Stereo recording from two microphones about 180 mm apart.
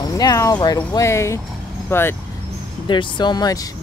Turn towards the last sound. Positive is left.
turn(degrees=20)  # may be behind; listen again after turning